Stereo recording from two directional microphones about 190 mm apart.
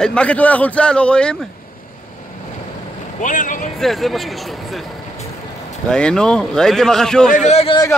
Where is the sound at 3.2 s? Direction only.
45° left (ahead or behind).